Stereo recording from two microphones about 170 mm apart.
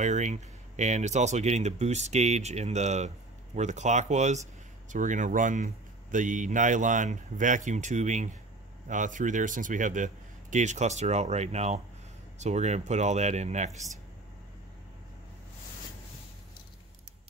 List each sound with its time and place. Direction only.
0.0 s speech: 45° right (ahead or behind)